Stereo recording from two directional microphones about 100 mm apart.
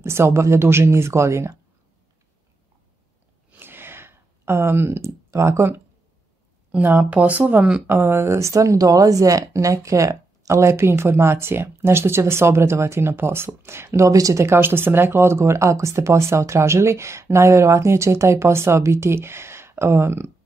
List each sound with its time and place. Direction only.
0.0 s speech: 25° right (ahead or behind)
3.5 s a sound: 20° right (ahead or behind)
6.7 s speech: 15° right (ahead or behind)